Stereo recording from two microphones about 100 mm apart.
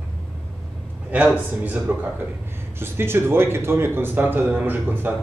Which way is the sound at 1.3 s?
15° right (ahead or behind).